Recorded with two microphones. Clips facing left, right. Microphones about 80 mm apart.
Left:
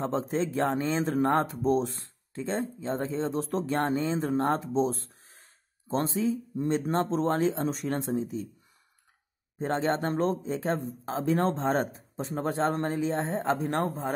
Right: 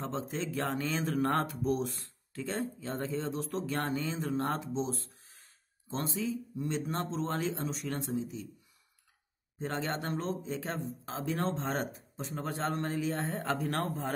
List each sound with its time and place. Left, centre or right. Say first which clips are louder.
0.0 s speech: left 7 dB; left
9.6 s speech: left 8 dB; left